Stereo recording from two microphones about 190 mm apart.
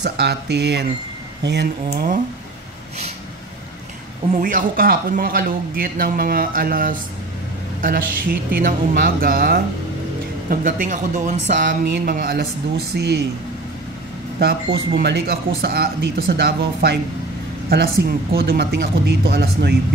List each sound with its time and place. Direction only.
0.0 s speech: 60° right (ahead or behind)
2.0 s a man's voice: 45° right (ahead or behind)
4.3 s a man's voice: 45° right (ahead or behind)
11.8 s a man's voice: 50° right (ahead or behind)
15.0 s speech: 55° right (ahead or behind)